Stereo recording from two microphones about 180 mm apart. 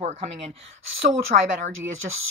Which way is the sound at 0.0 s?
40° right (ahead or behind).